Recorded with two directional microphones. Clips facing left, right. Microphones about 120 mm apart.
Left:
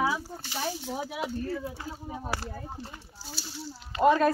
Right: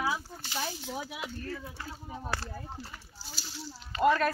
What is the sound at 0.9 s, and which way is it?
Speech, 35° left (ahead or behind).